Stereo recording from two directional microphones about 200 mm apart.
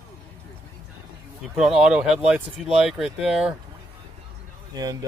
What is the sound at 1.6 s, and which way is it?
Speech, 5° right (ahead or behind).